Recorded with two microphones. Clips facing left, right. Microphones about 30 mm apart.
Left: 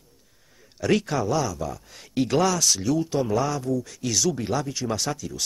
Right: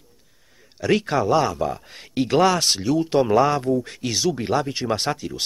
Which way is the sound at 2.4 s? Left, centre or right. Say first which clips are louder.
Right 3 dB; right.